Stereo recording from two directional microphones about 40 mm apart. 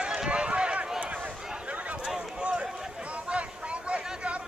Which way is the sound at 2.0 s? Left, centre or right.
Centre.